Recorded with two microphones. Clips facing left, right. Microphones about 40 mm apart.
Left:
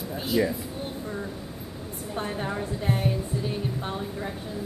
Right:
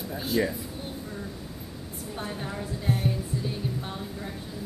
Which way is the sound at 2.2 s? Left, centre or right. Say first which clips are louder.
Left 5 dB; left.